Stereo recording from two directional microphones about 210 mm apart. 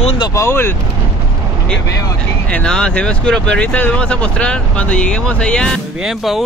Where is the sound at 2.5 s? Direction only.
5° left (ahead or behind).